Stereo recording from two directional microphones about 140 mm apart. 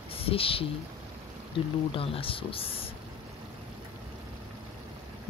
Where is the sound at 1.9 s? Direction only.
40° left (ahead or behind).